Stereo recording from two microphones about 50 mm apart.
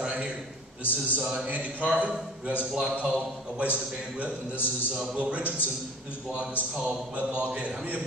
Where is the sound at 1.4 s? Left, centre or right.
Right.